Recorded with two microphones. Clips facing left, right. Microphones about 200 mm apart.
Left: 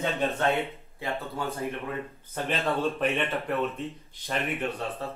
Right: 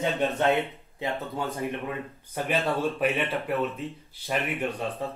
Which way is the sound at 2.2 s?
10° right (ahead or behind).